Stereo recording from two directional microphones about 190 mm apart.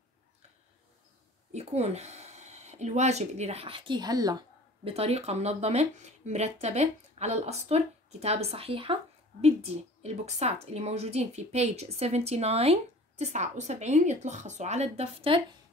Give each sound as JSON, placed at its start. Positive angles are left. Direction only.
{"t": 1.5, "sound": "speech", "side_deg": -35}